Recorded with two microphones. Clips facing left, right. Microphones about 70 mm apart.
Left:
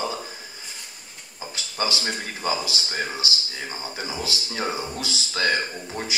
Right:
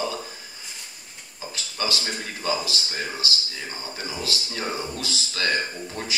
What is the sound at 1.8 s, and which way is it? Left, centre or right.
Speech, left.